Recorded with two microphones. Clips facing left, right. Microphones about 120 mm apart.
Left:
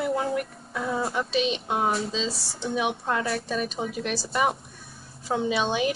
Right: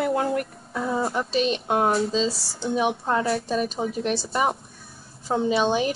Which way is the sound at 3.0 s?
30° right (ahead or behind).